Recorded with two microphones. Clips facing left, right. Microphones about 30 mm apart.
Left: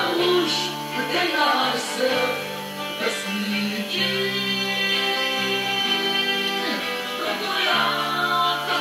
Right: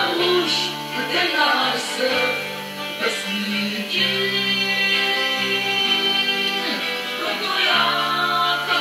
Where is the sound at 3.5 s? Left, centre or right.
Centre.